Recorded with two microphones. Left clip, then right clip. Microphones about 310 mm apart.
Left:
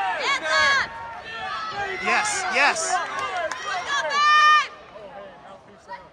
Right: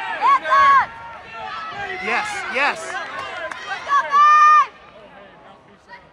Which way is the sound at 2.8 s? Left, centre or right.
Centre.